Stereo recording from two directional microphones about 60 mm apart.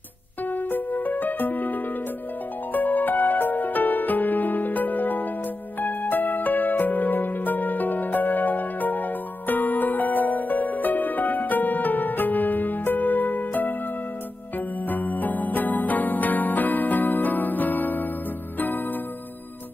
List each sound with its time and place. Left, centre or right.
0.5 s music: left
14.9 s music: left